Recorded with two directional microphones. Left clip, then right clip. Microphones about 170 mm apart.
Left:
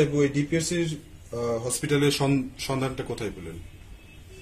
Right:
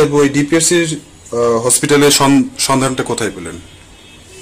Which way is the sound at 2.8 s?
55° right (ahead or behind).